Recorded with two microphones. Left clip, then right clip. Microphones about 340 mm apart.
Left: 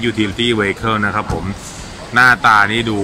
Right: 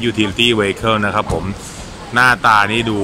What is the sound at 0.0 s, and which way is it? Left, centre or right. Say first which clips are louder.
Speech: right 2 dB; centre.